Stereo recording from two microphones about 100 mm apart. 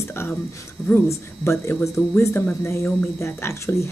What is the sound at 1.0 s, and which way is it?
Speech, 25° left (ahead or behind).